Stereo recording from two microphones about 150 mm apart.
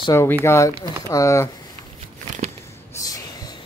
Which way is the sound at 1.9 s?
45° right (ahead or behind).